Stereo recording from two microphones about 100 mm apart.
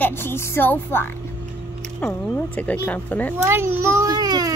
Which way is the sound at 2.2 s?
15° left (ahead or behind).